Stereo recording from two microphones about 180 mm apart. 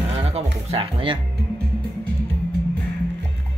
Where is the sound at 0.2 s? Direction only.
35° right (ahead or behind).